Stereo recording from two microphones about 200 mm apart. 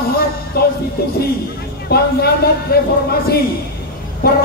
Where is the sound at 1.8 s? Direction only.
50° left (ahead or behind).